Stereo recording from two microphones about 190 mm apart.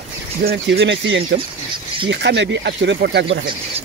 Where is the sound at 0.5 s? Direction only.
60° right (ahead or behind).